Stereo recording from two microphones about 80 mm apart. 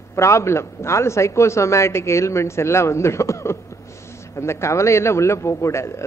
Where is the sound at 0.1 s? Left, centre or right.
Left.